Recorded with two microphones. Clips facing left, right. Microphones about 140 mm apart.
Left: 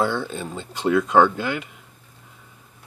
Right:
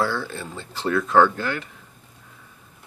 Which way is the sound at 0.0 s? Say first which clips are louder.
Left 2 dB; 20° left (ahead or behind).